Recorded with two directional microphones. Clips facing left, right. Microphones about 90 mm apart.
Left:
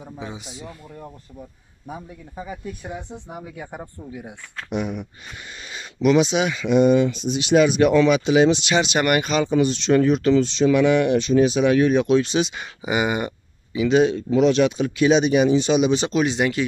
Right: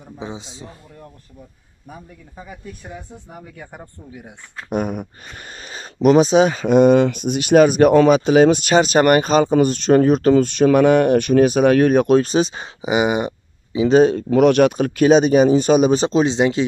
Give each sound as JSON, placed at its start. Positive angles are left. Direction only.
{"t": 0.2, "sound": "speech", "side_deg": -25}
{"t": 1.9, "sound": "speech", "side_deg": 10}
{"t": 3.3, "sound": "speech", "side_deg": 10}
{"t": 4.6, "sound": "speech", "side_deg": -50}
{"t": 12.8, "sound": "speech", "side_deg": -20}
{"t": 13.8, "sound": "speech", "side_deg": -45}
{"t": 16.1, "sound": "speech", "side_deg": -30}